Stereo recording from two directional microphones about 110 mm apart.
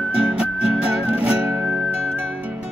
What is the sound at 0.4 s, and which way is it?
Music, 5° right (ahead or behind).